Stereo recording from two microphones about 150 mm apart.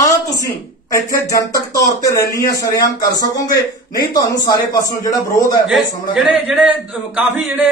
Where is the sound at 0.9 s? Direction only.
20° left (ahead or behind).